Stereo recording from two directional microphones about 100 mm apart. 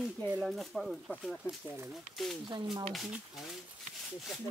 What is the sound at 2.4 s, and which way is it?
Speech, 45° right (ahead or behind).